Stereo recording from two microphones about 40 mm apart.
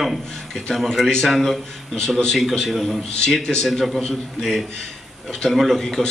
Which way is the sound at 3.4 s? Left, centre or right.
Centre.